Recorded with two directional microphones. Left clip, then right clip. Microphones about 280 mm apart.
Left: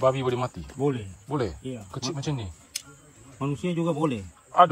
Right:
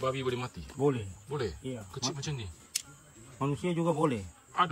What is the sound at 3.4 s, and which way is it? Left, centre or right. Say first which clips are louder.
A man's voice: left 3 dB; centre.